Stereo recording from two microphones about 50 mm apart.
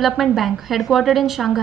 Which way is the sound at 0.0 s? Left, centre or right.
Centre.